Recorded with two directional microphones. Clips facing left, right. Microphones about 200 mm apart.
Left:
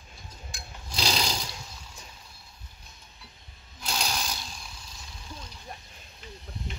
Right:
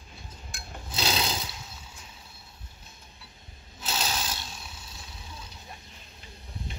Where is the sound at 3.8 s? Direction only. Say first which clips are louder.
Even; 5° right (ahead or behind).